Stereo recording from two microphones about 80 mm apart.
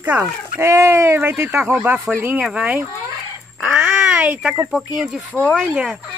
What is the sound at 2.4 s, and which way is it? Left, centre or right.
Speech, centre.